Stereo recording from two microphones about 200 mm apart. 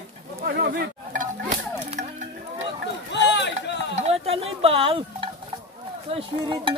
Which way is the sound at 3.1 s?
60° left (ahead or behind).